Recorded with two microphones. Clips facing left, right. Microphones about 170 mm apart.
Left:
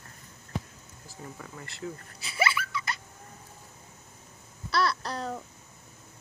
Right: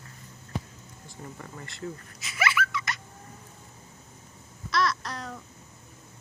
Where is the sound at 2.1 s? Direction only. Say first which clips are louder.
Right 1 dB; 30° left (ahead or behind).